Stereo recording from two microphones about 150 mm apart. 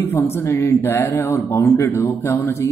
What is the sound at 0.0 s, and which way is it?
Speech, 15° left (ahead or behind).